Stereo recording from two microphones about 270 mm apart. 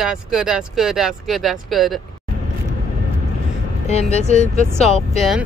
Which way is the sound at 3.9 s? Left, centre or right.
Left.